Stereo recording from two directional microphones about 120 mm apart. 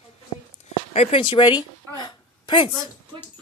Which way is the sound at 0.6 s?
65° left (ahead or behind).